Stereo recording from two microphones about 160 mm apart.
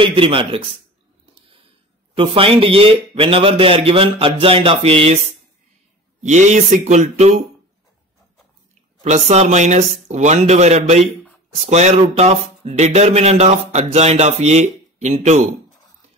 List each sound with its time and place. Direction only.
0.0 s a man's voice: 30° right (ahead or behind)
2.1 s a man's voice: 35° right (ahead or behind)
6.2 s speech: 45° right (ahead or behind)
9.0 s speech: 45° right (ahead or behind)